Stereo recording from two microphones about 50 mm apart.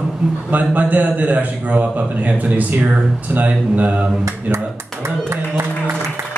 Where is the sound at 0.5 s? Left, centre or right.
Right.